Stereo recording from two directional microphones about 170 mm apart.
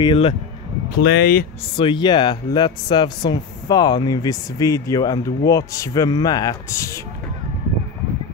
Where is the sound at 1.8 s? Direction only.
25° left (ahead or behind).